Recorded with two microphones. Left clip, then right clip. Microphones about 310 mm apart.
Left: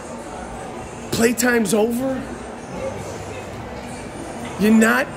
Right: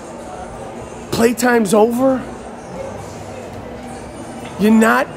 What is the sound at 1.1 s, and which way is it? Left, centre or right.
Speech, centre.